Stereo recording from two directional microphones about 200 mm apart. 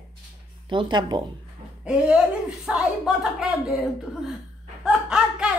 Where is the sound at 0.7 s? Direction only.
25° right (ahead or behind).